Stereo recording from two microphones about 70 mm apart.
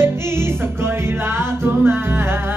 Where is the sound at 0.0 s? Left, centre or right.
Right.